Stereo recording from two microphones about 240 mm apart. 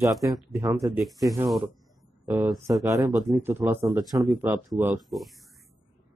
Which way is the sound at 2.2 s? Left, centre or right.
Centre.